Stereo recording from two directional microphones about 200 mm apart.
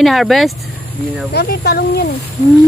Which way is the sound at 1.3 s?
50° left (ahead or behind).